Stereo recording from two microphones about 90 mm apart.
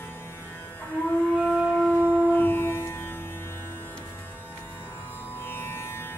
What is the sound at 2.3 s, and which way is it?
Music, 20° left (ahead or behind).